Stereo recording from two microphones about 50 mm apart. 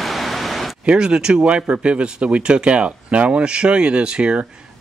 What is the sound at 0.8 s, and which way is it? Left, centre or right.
Speech, centre.